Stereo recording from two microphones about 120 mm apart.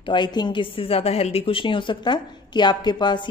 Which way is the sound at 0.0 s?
40° left (ahead or behind).